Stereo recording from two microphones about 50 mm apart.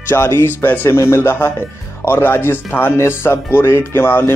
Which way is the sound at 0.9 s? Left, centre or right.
Left.